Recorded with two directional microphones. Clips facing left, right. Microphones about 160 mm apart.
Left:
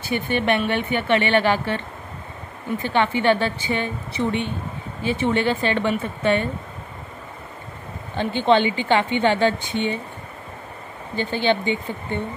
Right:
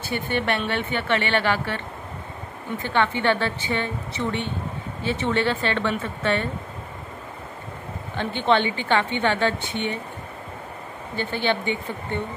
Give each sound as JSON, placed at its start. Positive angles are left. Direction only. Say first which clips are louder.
{"t": 0.1, "sound": "a woman's voice", "louder": "left 4 dB", "side_deg": 15}
{"t": 2.9, "sound": "a woman's voice", "louder": "left 3 dB", "side_deg": 15}
{"t": 8.4, "sound": "a woman's voice", "louder": "left 3 dB", "side_deg": 15}
{"t": 11.1, "sound": "a woman's voice", "louder": "left 3 dB", "side_deg": 15}